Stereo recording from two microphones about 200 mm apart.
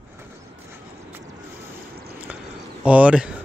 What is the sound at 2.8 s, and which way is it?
Speech, 5° right (ahead or behind).